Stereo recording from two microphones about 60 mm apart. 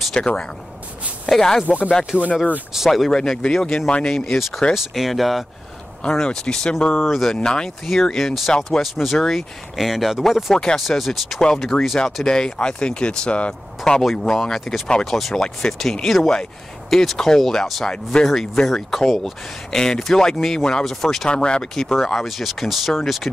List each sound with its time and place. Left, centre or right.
0.1 s speech: centre
1.7 s speech: left
2.7 s speech: centre
3.1 s speech: centre
4.7 s speech: centre
6.0 s speech: centre
10.5 s speech: centre
11.4 s speech: centre
13.9 s speech: centre
21.3 s speech: centre